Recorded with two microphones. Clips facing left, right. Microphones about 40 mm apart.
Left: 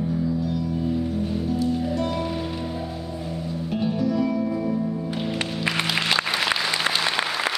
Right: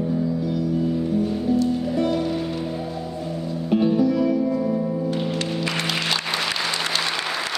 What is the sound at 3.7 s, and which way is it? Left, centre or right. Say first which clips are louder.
Music: right 5 dB; centre.